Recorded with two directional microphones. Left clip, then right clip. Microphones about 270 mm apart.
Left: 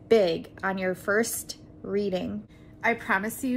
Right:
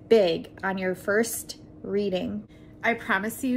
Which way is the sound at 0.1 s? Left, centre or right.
Centre.